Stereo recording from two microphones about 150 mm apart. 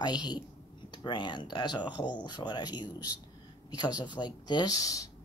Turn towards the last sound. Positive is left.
turn(degrees=25)  # may be behind; listen again after turning